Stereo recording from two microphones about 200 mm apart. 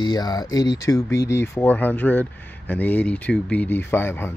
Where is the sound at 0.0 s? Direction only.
20° left (ahead or behind).